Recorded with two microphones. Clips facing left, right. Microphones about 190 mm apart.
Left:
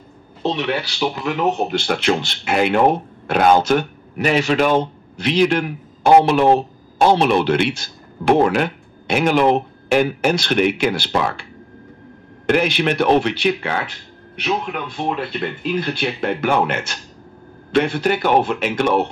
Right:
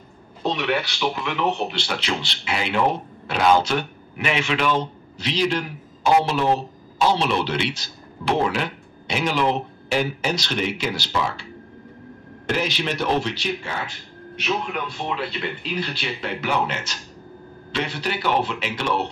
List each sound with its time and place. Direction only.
0.4 s speech: 30° left (ahead or behind); by 11.4 s 55° left (ahead or behind)
12.4 s speech: 60° left (ahead or behind)
14.3 s speech: 55° left (ahead or behind)